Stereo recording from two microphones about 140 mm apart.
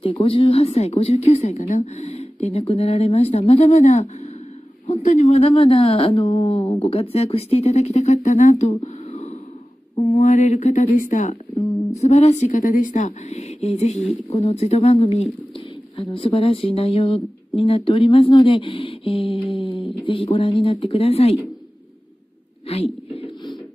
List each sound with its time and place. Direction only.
0.0 s speech: 40° left (ahead or behind); by 11.6 s 60° left (ahead or behind)
12.0 s speech: 50° left (ahead or behind)
22.7 s speech: 45° left (ahead or behind)
23.1 s a sound: 40° left (ahead or behind)